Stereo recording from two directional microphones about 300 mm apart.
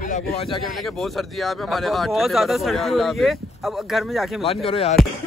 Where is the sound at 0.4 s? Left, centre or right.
Centre.